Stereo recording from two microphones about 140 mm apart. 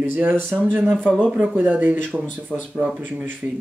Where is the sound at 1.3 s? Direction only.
10° right (ahead or behind).